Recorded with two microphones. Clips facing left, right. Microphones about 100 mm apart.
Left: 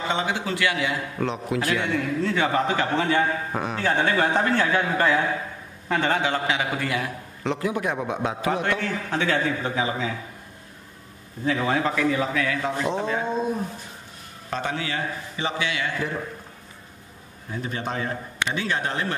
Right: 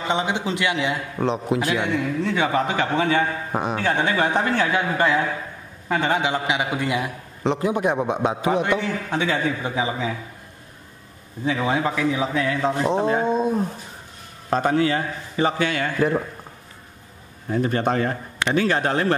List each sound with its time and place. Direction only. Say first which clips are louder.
0.1 s a man's voice: right 4 dB; 20° right (ahead or behind)
11.4 s a man's voice: right 1 dB; 15° right (ahead or behind)
12.4 s a sound: right 4 dB; 30° right (ahead or behind)
14.5 s speech: right 9 dB; 40° right (ahead or behind)
17.5 s speech: right 9 dB; 55° right (ahead or behind)